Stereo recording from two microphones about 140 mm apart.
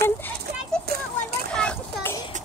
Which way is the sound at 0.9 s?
90° right.